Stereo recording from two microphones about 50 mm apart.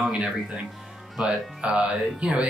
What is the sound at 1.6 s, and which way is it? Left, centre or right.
Speech, right.